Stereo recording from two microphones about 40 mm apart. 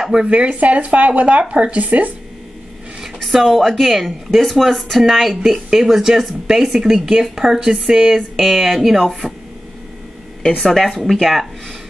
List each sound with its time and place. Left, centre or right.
0.1 s speech: right
3.3 s a woman's voice: centre
10.6 s speech: centre